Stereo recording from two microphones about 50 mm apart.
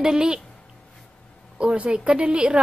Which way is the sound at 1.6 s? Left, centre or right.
Centre.